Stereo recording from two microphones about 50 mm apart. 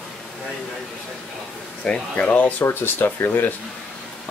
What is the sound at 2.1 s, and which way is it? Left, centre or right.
Speech, left.